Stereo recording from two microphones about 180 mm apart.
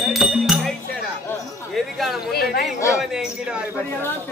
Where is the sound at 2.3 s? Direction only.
60° left (ahead or behind).